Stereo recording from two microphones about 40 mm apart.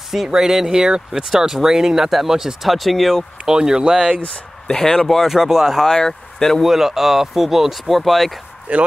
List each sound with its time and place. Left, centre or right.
0.3 s speech: centre
3.4 s speech: centre
4.6 s speech: centre
5.2 s speech: centre
5.9 s speech: centre
6.6 s speech: centre
8.7 s speech: right